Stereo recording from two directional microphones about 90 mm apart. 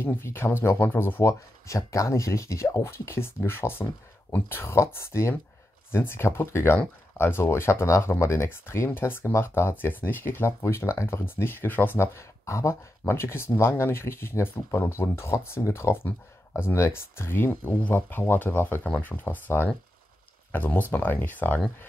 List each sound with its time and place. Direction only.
0.0 s speech: 25° left (ahead or behind)